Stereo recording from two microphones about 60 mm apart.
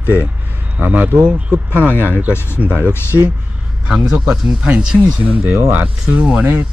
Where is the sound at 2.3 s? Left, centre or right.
Left.